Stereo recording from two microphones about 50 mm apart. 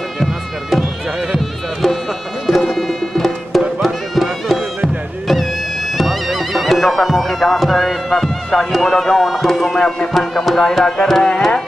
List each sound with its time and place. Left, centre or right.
0.2 s music: centre
9.8 s music: centre
10.1 s music: centre